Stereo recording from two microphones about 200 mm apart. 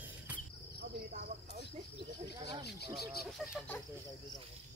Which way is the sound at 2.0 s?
20° right (ahead or behind).